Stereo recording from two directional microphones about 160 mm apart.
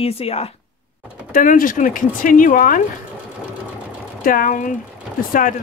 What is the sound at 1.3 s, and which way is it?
Speech, 55° left (ahead or behind).